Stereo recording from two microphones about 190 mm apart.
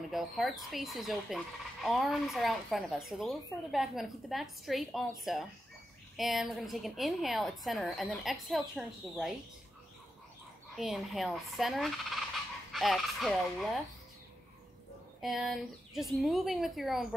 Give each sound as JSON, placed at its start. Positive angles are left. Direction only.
{"t": 0.1, "sound": "speech", "side_deg": 0}
{"t": 10.8, "sound": "speech", "side_deg": 0}
{"t": 15.2, "sound": "speech", "side_deg": 0}